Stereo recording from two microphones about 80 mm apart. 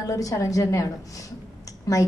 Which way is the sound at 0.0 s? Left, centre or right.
Left.